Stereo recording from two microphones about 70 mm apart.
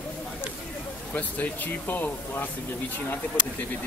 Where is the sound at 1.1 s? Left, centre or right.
Left.